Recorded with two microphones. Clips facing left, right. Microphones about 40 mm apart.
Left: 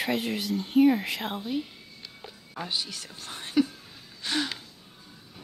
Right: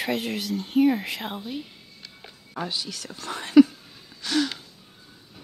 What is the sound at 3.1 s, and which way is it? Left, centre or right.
Speech, right.